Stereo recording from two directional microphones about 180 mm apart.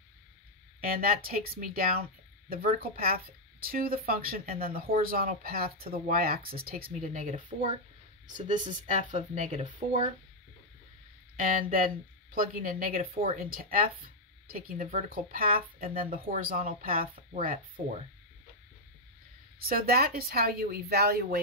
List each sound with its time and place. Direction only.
1.0 s speech: 55° right (ahead or behind)
11.3 s speech: 50° right (ahead or behind)
19.6 s speech: 55° right (ahead or behind)